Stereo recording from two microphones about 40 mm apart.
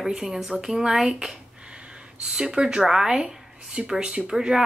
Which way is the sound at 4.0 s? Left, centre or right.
Right.